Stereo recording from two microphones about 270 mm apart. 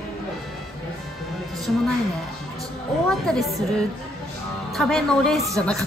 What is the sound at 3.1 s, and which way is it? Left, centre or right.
Speech, centre.